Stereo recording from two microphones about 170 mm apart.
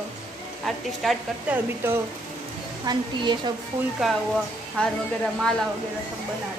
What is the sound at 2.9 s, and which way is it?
Speech, 25° right (ahead or behind).